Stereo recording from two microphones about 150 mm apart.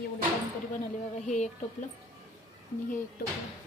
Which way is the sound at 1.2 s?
50° left (ahead or behind).